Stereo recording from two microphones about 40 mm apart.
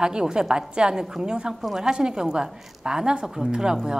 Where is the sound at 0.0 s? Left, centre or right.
Centre.